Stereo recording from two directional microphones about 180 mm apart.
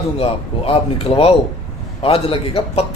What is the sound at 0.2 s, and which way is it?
Speech, 30° left (ahead or behind).